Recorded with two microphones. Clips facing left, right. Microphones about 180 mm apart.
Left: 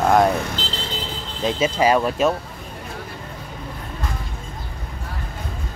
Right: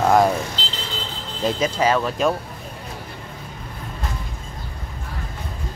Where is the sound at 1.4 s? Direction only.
5° left (ahead or behind).